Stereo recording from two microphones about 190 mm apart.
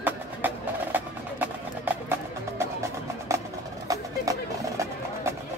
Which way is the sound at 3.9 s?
20° right (ahead or behind).